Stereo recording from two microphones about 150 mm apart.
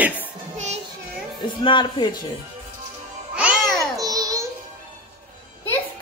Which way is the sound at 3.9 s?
25° right (ahead or behind).